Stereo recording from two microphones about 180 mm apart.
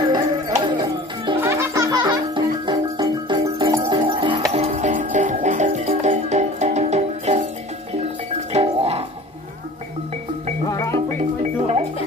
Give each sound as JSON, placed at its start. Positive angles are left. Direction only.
{"t": 0.1, "sound": "music", "side_deg": -25}
{"t": 1.4, "sound": "music", "side_deg": -15}
{"t": 8.5, "sound": "music", "side_deg": -35}
{"t": 10.7, "sound": "music", "side_deg": 20}